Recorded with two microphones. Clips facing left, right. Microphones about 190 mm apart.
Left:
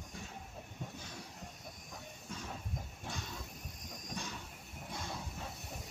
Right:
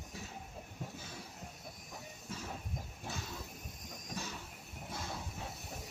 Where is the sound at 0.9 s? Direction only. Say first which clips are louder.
Even; 5° right (ahead or behind).